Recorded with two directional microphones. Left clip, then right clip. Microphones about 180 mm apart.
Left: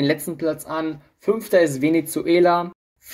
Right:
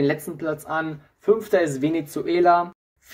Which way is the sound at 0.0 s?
40° left (ahead or behind).